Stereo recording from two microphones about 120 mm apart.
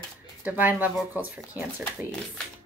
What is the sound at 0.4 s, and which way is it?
Speech, 15° right (ahead or behind).